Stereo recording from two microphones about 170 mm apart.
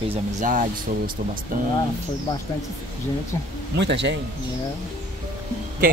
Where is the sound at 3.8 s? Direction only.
90° right.